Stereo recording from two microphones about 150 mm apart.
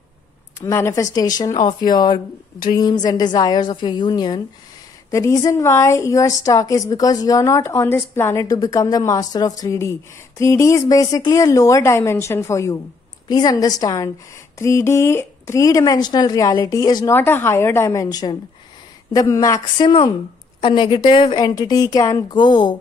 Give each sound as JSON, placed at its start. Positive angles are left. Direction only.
{"t": 0.6, "sound": "a woman's voice", "side_deg": 20}
{"t": 19.8, "sound": "a woman's voice", "side_deg": 40}